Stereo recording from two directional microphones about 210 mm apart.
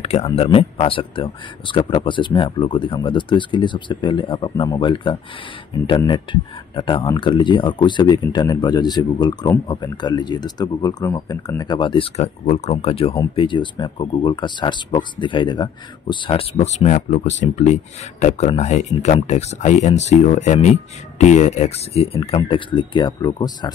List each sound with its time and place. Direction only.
0.0 s speech: 30° left (ahead or behind)